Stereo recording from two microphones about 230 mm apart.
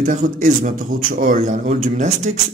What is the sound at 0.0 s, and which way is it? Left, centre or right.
Speech, right.